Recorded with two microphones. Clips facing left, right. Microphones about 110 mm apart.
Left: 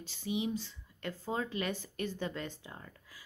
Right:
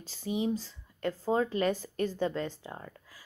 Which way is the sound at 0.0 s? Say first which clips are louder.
Right 4 dB; 40° right (ahead or behind).